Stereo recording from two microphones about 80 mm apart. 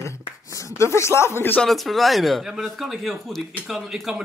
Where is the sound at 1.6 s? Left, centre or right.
Centre.